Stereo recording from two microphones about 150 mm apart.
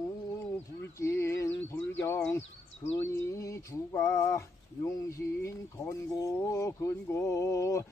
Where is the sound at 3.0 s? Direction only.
20° left (ahead or behind).